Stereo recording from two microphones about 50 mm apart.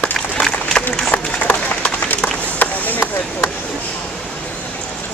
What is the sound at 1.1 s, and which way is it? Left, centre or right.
Run, left.